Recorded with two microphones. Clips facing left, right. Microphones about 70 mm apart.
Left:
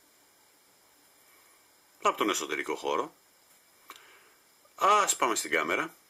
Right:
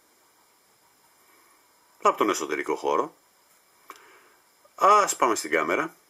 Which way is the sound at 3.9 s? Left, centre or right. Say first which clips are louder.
Right 5 dB; centre.